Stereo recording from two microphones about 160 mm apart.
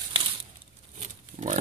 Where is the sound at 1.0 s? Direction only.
50° right (ahead or behind).